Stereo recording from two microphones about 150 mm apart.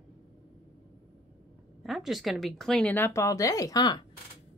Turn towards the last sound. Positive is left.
turn(degrees=25)  # may be behind; listen again after turning